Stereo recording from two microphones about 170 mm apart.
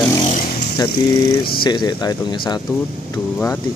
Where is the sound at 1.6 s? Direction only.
25° left (ahead or behind).